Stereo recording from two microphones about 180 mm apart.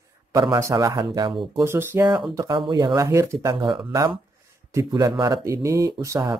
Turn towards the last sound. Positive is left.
turn(degrees=-15)  # may be behind; listen again after turning